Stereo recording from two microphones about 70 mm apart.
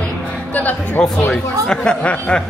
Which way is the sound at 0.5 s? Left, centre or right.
Left.